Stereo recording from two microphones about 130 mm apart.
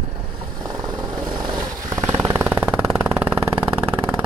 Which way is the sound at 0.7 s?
30° right (ahead or behind).